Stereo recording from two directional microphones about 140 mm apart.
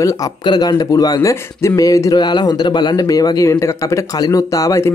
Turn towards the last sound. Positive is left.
turn(degrees=25)  # may be behind; listen again after turning